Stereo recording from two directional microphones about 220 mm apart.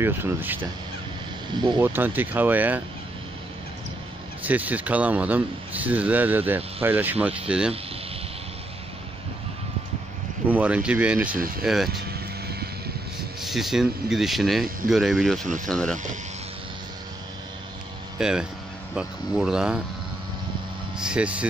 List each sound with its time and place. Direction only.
0.0 s speech: 10° right (ahead or behind)
1.5 s speech: 20° right (ahead or behind)
1.8 s speech: 10° right (ahead or behind)
4.5 s speech: 5° right (ahead or behind)
10.5 s speech: 5° right (ahead or behind)
11.3 s speech: 40° right (ahead or behind)
11.6 s speech: centre (ahead or behind)
11.9 s vehicle: 45° right (ahead or behind)
13.4 s speech: centre (ahead or behind)
18.2 s speech: 5° right (ahead or behind)
21.0 s speech: 5° right (ahead or behind)